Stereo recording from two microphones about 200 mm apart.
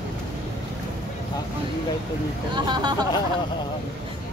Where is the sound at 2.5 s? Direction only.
20° right (ahead or behind).